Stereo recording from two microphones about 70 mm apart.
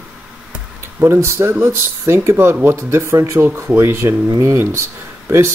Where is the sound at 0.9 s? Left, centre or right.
Right.